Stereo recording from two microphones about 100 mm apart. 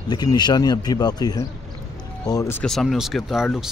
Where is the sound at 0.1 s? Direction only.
45° left (ahead or behind).